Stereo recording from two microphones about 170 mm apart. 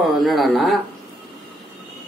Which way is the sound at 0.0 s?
Centre (ahead or behind).